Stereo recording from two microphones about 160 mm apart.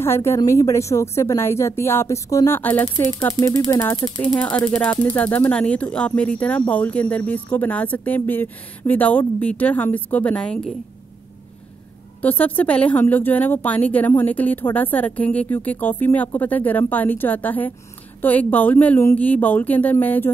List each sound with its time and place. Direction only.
0.0 s a woman's voice: 15° left (ahead or behind)
4.4 s speech: 10° left (ahead or behind)
12.2 s speech: 10° left (ahead or behind)